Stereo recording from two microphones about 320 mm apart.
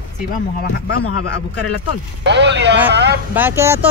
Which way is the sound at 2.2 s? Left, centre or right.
Right.